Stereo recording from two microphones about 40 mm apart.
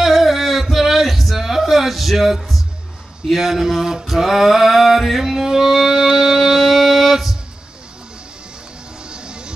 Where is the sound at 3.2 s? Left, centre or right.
Centre.